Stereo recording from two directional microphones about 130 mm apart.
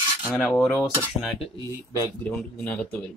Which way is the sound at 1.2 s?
Centre (ahead or behind).